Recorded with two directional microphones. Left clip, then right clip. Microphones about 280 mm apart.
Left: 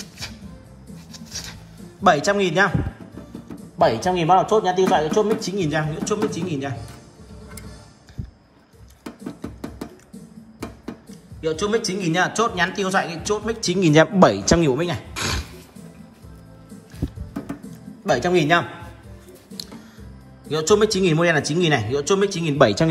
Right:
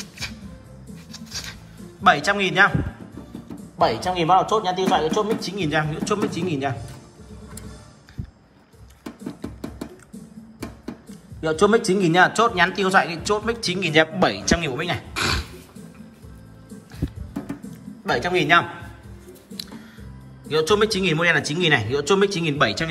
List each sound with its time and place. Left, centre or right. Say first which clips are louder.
2.0 s a man's voice: left 1 dB; centre
3.7 s a man's voice: left 2 dB; left
5.6 s a man's voice: even; centre
9.4 s music: even; centre
11.9 s a man's voice: right 5 dB; centre
15.1 s a sound: right 4 dB; centre
17.0 s music: even; centre
18.0 s a man's voice: left 2 dB; left
20.4 s a man's voice: left 1 dB; centre